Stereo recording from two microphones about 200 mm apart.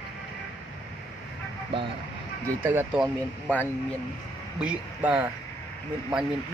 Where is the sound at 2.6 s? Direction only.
10° right (ahead or behind).